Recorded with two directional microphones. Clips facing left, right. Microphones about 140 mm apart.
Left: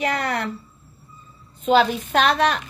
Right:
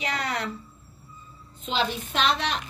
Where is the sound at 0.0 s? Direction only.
55° left (ahead or behind).